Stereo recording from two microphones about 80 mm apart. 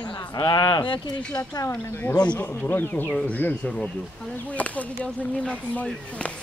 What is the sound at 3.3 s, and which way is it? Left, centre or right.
Speech, left.